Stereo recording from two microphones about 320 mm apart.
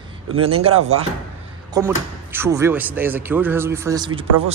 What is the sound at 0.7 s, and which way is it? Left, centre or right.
Speech, right.